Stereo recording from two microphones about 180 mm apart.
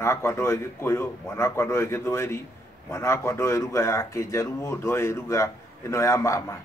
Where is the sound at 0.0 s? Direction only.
15° left (ahead or behind).